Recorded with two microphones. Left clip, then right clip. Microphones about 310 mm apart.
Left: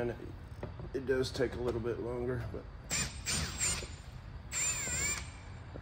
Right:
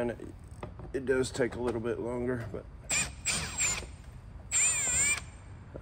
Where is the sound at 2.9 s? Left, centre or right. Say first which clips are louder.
Right 4 dB; centre.